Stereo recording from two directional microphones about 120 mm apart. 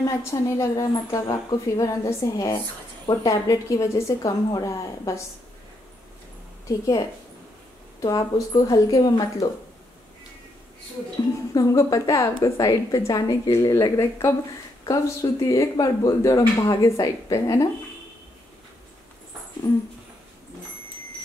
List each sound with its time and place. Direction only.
0.2 s a woman's voice: 25° left (ahead or behind)
8.0 s speech: 30° left (ahead or behind)
11.5 s a woman's voice: 30° left (ahead or behind)